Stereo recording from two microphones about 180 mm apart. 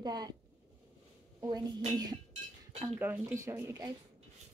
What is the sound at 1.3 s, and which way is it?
Speech, 20° right (ahead or behind).